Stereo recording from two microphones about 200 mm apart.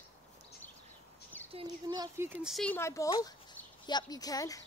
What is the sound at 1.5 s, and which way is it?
Speech, 25° right (ahead or behind).